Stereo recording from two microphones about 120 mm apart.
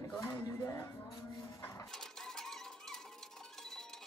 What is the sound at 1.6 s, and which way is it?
Dishes, 25° left (ahead or behind).